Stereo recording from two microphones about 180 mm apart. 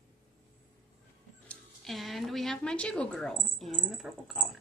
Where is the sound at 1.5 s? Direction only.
Centre (ahead or behind).